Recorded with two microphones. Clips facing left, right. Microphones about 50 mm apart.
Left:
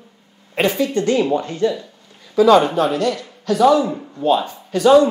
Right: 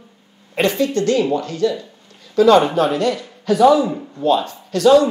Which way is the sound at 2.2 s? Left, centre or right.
Centre.